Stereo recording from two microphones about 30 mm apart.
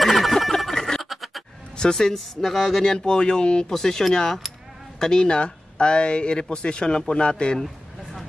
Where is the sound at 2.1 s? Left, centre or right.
Centre.